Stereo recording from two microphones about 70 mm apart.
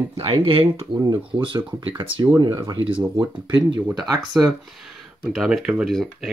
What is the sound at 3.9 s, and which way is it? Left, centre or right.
Speech, right.